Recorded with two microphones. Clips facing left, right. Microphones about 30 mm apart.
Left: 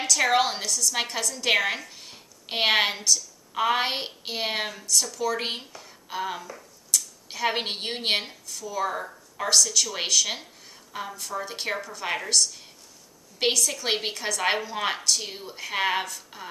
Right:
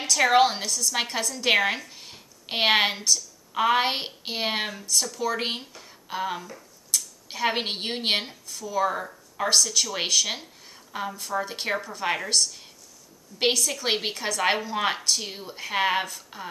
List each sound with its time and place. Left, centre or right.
0.0 s a woman's voice: centre